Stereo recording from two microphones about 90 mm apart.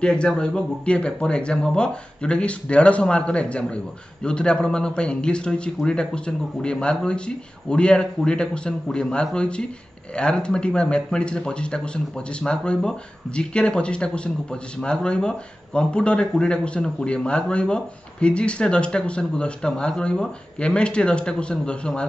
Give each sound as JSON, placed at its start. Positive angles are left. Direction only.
{"t": 0.0, "sound": "speech", "side_deg": 10}